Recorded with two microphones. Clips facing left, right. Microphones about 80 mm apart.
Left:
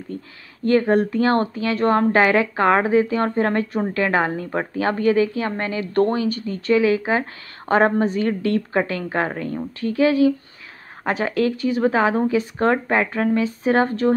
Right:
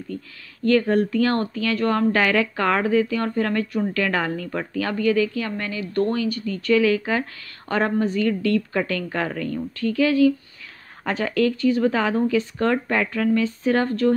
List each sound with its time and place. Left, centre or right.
0.7 s speech: left